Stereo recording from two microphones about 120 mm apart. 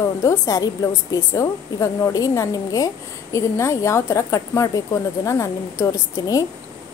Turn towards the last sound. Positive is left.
turn(degrees=25)  # may be behind; listen again after turning